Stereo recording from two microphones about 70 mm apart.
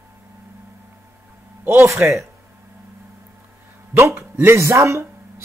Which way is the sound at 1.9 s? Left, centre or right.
Right.